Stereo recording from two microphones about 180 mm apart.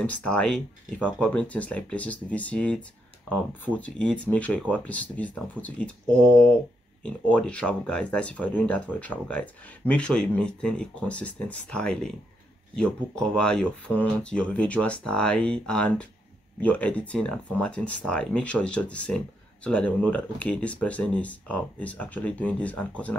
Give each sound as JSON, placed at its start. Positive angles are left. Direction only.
{"t": 0.0, "sound": "speech", "side_deg": 5}
{"t": 3.8, "sound": "speech", "side_deg": 5}